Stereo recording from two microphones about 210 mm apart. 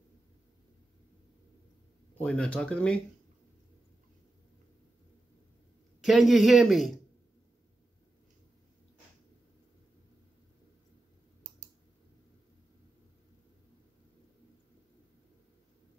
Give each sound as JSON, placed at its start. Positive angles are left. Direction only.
{"t": 2.1, "sound": "a man's voice", "side_deg": 5}
{"t": 5.9, "sound": "a man's voice", "side_deg": 0}